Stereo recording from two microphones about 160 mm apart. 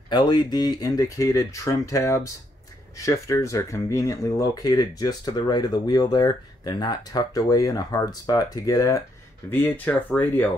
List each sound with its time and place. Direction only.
0.1 s speech: 25° left (ahead or behind)